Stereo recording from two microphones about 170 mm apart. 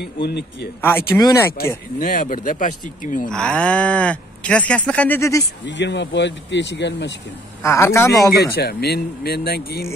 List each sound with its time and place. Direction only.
0.0 s speech: 75° left (ahead or behind)
0.7 s cattle: 15° left (ahead or behind)
2.0 s speech: 50° left (ahead or behind)
3.3 s cattle: 5° left (ahead or behind)
5.7 s speech: 90° left
7.6 s cattle: 15° left (ahead or behind)
8.5 s speech: 70° left (ahead or behind)